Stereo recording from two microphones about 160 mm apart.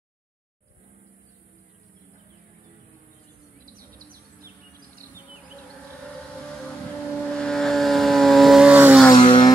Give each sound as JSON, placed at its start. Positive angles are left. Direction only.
{"t": 7.2, "sound": "vehicle", "side_deg": 5}
{"t": 9.1, "sound": "vehicle", "side_deg": 30}